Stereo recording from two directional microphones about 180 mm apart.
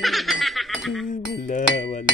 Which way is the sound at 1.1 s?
45° left (ahead or behind).